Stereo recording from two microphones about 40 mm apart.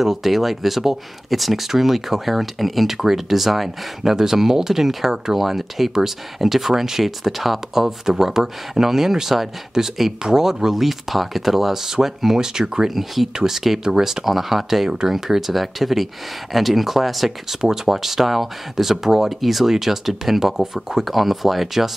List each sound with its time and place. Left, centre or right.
0.0 s speech: centre
12.9 s speech: centre